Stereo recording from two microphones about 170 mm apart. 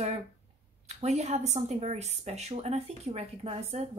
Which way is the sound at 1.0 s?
40° right (ahead or behind).